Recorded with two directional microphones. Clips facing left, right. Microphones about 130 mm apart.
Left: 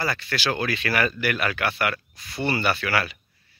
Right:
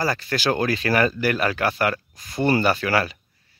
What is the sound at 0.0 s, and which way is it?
Speech, 35° right (ahead or behind).